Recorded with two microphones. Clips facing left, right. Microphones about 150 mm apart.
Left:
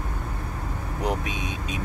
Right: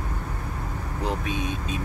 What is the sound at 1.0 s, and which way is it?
Speech, 15° left (ahead or behind).